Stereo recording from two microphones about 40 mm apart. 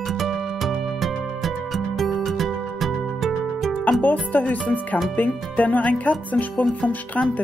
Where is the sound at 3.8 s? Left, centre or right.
Left.